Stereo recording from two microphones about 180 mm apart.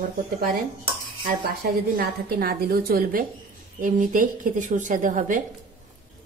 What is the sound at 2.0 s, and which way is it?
A woman's voice, 60° right (ahead or behind).